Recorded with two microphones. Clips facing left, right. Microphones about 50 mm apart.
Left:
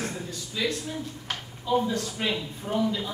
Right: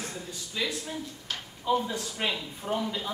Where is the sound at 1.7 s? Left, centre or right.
Right.